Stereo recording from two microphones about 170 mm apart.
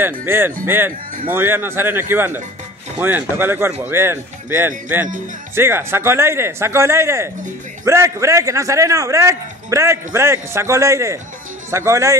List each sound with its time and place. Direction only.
0.0 s a man's voice: 15° right (ahead or behind)